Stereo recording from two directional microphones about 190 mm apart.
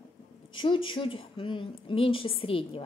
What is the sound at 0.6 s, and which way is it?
A woman's voice, 25° left (ahead or behind).